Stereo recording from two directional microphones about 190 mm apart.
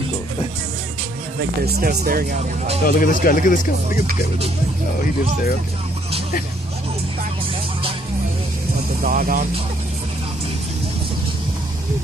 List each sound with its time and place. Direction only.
1.8 s speech: 55° right (ahead or behind)
2.8 s speech: 50° left (ahead or behind)
9.0 s speech: 45° right (ahead or behind)